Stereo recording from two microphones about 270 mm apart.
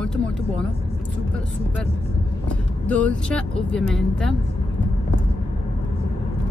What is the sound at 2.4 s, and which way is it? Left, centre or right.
Speech, centre.